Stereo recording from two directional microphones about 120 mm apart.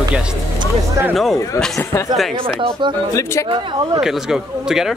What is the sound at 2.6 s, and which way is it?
Speech, 40° right (ahead or behind).